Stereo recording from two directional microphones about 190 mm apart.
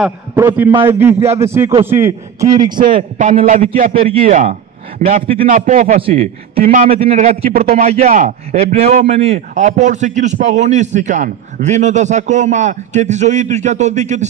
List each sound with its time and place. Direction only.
0.4 s a man's voice: 15° right (ahead or behind)
2.9 s a man's voice: 35° right (ahead or behind)
3.9 s speech: 30° right (ahead or behind)
4.3 s speech: 45° right (ahead or behind)
5.2 s speech: 30° right (ahead or behind)
5.5 s a man's voice: 45° right (ahead or behind)